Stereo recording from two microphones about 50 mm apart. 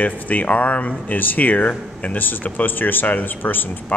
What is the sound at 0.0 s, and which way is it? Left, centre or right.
Speech, left.